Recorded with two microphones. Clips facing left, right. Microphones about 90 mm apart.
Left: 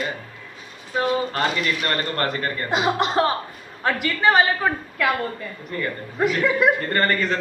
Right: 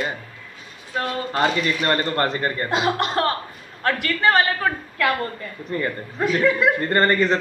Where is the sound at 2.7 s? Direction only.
10° left (ahead or behind).